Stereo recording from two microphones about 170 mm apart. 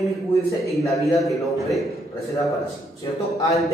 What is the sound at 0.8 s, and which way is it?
Speech, 20° left (ahead or behind).